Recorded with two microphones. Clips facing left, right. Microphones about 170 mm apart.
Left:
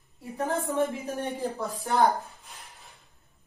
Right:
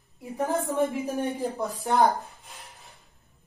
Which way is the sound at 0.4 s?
15° right (ahead or behind).